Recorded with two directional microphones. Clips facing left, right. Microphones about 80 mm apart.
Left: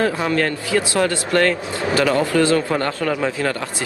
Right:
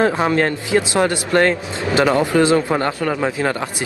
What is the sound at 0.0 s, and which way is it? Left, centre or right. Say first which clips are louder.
A man's voice: right 3 dB; right.